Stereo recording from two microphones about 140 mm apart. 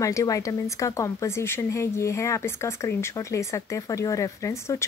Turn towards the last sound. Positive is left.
turn(degrees=25)  # may be behind; listen again after turning